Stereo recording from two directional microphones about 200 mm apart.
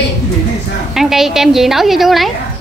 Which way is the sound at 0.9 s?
Centre (ahead or behind).